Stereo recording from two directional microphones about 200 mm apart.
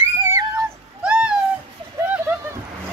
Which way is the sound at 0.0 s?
15° right (ahead or behind).